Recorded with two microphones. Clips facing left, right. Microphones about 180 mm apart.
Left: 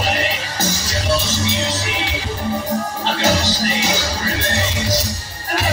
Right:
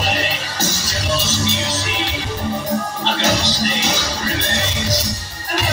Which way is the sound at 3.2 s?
10° left (ahead or behind).